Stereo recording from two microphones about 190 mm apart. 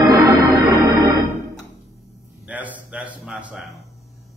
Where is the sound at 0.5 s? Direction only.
15° right (ahead or behind).